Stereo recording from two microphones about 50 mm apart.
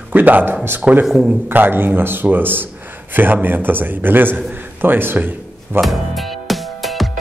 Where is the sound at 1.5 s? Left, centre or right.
Right.